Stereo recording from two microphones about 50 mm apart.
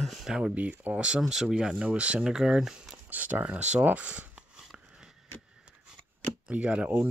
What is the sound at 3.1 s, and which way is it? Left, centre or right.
Speech, right.